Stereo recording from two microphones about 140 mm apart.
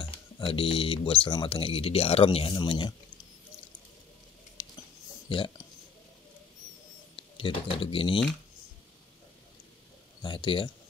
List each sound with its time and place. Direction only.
0.0 s speech: 40° left (ahead or behind)
5.3 s speech: 35° left (ahead or behind)
7.2 s speech: 40° left (ahead or behind)
10.2 s speech: 35° left (ahead or behind)